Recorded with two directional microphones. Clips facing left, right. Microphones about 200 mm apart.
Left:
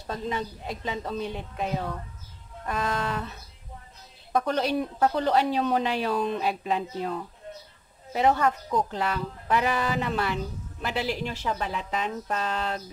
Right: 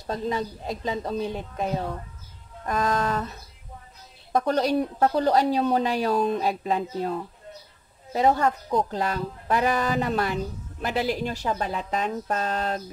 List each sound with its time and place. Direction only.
0.0 s a woman's voice: 40° right (ahead or behind)